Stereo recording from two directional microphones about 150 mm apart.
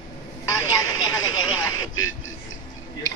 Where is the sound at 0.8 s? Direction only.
25° left (ahead or behind).